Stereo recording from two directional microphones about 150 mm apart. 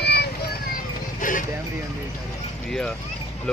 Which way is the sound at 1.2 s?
60° left (ahead or behind).